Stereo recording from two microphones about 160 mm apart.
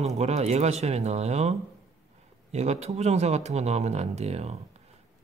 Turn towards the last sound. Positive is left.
turn(degrees=-40)  # may be behind; listen again after turning